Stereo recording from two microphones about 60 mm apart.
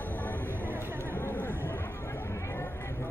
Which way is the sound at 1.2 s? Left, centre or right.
Left.